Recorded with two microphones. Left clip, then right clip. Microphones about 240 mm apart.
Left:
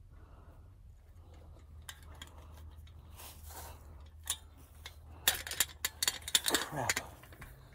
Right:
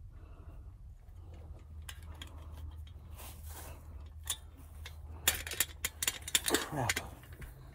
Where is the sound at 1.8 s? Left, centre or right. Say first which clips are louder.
Even; centre.